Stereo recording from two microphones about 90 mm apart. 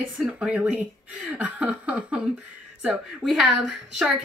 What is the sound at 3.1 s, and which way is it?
A woman's voice, centre (ahead or behind).